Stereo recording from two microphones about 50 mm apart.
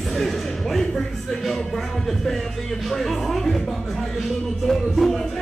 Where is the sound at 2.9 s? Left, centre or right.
Centre.